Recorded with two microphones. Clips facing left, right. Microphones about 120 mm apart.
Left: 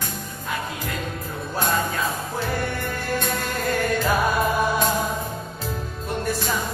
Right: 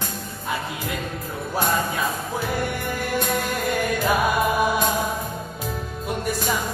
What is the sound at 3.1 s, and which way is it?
Music, 10° right (ahead or behind).